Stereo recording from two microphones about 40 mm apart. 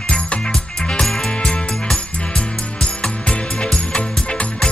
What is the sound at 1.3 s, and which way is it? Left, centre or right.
Music, left.